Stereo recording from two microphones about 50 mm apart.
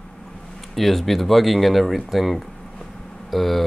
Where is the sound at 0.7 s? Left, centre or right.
Centre.